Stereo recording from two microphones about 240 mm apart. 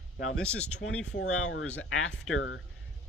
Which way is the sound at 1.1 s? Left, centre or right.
Left.